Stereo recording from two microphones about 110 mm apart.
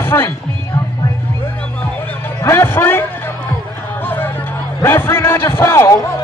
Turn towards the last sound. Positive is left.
turn(degrees=25)  # may be behind; listen again after turning